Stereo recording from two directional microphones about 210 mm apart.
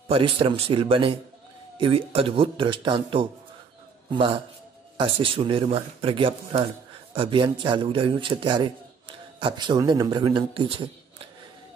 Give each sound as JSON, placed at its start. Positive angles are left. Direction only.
{"t": 0.1, "sound": "speech", "side_deg": -25}